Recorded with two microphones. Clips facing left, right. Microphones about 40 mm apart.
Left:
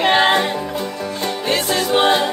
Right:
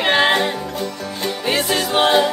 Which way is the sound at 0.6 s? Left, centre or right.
Centre.